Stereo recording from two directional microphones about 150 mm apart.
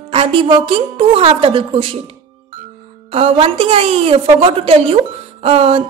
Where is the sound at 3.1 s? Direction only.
40° right (ahead or behind).